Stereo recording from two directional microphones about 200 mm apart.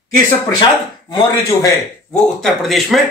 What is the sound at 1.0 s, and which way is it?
Speech, 15° left (ahead or behind).